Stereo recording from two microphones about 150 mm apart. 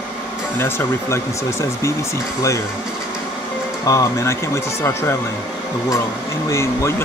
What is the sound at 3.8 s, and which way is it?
Speech, 25° left (ahead or behind).